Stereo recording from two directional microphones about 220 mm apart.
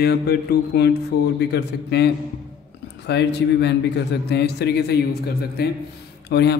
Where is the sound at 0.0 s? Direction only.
45° left (ahead or behind).